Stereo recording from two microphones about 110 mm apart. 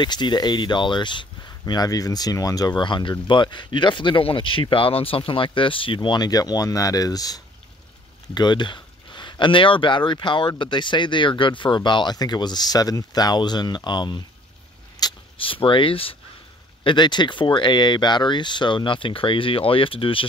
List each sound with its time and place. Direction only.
0.0 s speech: 40° left (ahead or behind)
1.7 s speech: 35° left (ahead or behind); by 5.9 s 50° left (ahead or behind)
5.9 s speech: 40° left (ahead or behind)
15.0 s vehicle: 35° left (ahead or behind)
15.4 s speech: 50° left (ahead or behind)
16.8 s speech: 45° left (ahead or behind)